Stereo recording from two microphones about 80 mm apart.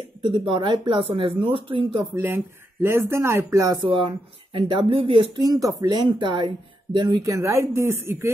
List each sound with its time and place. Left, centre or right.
0.2 s speech: right
2.1 s speech: right
3.7 s speech: right
5.4 s speech: right
6.1 s speech: right
7.2 s speech: right